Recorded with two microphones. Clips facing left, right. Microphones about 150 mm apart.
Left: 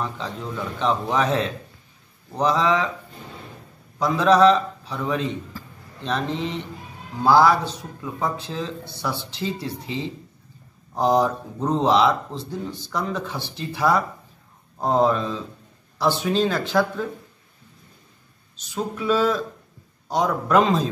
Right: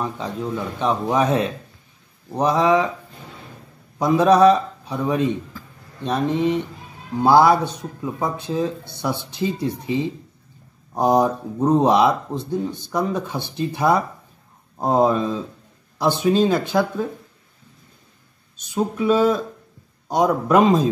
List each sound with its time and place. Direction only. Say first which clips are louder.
0.0 s speech: right 4 dB; 10° right (ahead or behind)
4.0 s speech: right 2 dB; 15° right (ahead or behind)
12.4 s speech: right 6 dB; 55° right (ahead or behind)
12.9 s speech: right 4 dB; 15° right (ahead or behind)
18.9 s speech: right 3 dB; 20° right (ahead or behind)